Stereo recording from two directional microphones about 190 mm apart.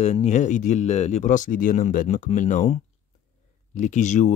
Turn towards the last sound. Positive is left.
turn(degrees=40)  # may be behind; listen again after turning